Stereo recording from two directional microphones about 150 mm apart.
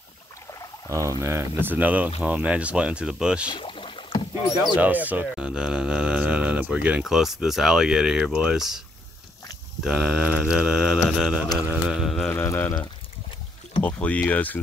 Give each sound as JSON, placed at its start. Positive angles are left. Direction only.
{"t": 0.5, "sound": "a sound", "side_deg": 20}
{"t": 1.2, "sound": "speech", "side_deg": -15}
{"t": 3.4, "sound": "rowboat", "side_deg": 35}
{"t": 4.7, "sound": "speech", "side_deg": -10}
{"t": 9.8, "sound": "speech", "side_deg": -5}
{"t": 12.3, "sound": "speech", "side_deg": 15}
{"t": 13.8, "sound": "speech", "side_deg": 10}